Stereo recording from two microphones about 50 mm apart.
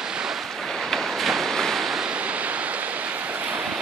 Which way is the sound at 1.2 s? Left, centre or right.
Centre.